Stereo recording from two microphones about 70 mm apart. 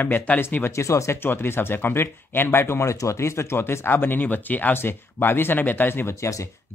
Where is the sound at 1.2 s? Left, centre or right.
Left.